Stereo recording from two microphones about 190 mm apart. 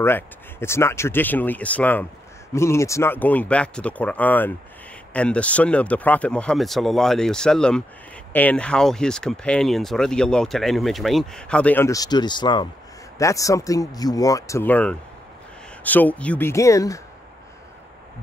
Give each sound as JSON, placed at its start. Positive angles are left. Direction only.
{"t": 0.0, "sound": "speech", "side_deg": 10}